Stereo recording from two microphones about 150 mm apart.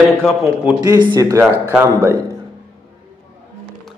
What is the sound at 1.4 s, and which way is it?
Speech, 10° right (ahead or behind).